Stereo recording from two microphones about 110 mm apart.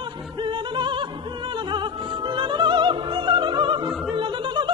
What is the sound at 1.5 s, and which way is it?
Music, 45° right (ahead or behind).